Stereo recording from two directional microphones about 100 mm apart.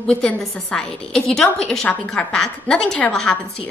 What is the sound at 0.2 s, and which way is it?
A woman's voice, 10° left (ahead or behind).